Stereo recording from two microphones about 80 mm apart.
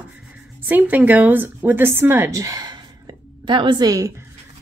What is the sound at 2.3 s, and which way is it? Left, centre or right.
Speech, right.